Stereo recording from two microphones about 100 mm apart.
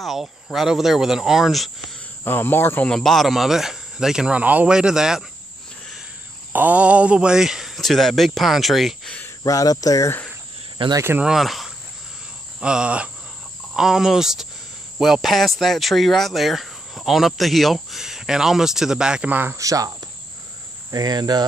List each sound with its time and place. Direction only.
0.0 s speech: centre (ahead or behind)
2.2 s speech: 20° left (ahead or behind)
2.9 s speech: 5° left (ahead or behind)
6.5 s speech: 15° right (ahead or behind)
9.4 s speech: 35° left (ahead or behind)
10.8 s speech: 60° right (ahead or behind)
11.1 s speech: 5° right (ahead or behind)
19.5 s cricket: 35° right (ahead or behind)
20.9 s cricket: 40° right (ahead or behind)